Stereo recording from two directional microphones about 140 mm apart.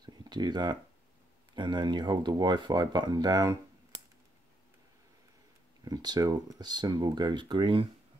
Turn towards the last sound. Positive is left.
turn(degrees=-35)  # may be behind; listen again after turning